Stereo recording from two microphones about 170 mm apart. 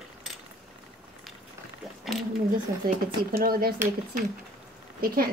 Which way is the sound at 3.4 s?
60° right (ahead or behind).